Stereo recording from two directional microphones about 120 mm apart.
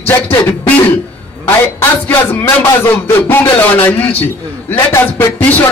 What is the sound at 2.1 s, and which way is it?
Music, 25° left (ahead or behind).